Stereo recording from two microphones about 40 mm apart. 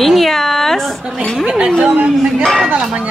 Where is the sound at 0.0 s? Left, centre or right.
Centre.